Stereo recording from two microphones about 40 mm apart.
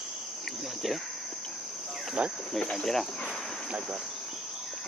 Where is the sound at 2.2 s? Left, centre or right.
Right.